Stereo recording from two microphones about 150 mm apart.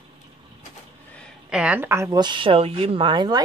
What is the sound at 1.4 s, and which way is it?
Speech, 5° right (ahead or behind).